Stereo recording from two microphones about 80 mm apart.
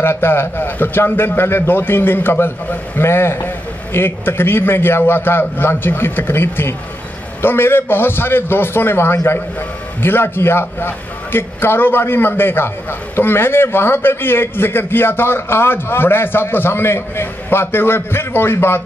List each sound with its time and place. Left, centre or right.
0.0 s a man's voice: left